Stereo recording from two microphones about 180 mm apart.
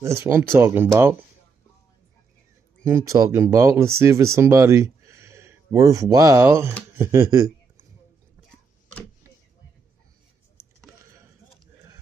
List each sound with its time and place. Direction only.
0.0 s speech: 15° right (ahead or behind)
2.8 s speech: 15° right (ahead or behind)
6.9 s a sound: 15° right (ahead or behind)